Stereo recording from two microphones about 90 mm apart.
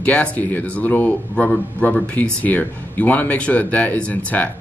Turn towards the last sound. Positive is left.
turn(degrees=15)  # may be behind; listen again after turning